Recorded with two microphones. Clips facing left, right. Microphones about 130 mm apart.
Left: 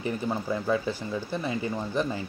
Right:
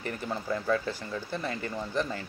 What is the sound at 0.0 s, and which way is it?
Speech, 15° left (ahead or behind).